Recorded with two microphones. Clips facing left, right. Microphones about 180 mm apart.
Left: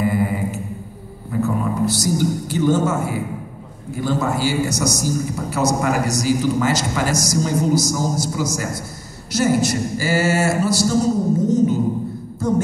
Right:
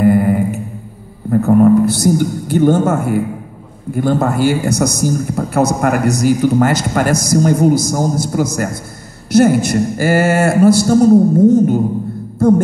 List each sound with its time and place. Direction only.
0.0 s mantra: 55° right (ahead or behind)
1.3 s a man's voice: 55° right (ahead or behind)
12.4 s a sound: 55° right (ahead or behind)